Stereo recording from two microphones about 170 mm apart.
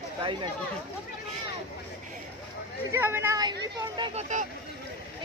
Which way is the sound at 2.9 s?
15° right (ahead or behind).